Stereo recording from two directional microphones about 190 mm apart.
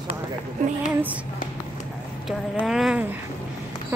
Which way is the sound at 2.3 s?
Centre (ahead or behind).